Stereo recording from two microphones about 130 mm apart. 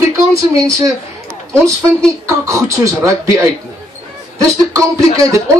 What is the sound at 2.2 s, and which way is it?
Speech, 25° right (ahead or behind).